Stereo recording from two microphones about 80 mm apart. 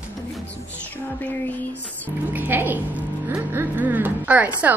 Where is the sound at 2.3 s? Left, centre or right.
Right.